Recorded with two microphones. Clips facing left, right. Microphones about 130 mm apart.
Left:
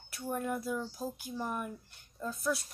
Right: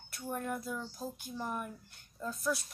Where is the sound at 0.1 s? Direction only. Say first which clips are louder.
Left 3 dB; 5° left (ahead or behind).